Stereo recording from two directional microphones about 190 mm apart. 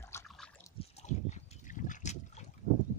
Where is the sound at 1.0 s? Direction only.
40° left (ahead or behind).